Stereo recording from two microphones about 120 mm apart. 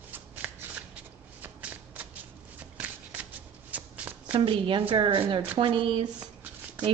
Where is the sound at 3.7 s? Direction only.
15° right (ahead or behind).